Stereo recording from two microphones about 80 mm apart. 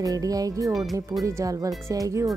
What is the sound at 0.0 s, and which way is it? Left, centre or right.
Speech, right.